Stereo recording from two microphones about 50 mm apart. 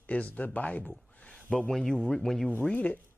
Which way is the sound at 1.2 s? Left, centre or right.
Centre.